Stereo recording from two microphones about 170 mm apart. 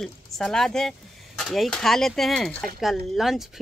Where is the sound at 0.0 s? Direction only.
Centre (ahead or behind).